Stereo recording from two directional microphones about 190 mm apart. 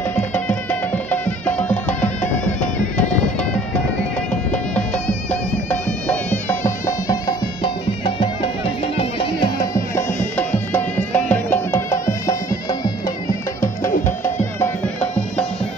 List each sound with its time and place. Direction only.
0.1 s music: 10° left (ahead or behind)
4.3 s music: 5° left (ahead or behind); by 9.5 s 25° left (ahead or behind)
9.9 s music: 10° left (ahead or behind)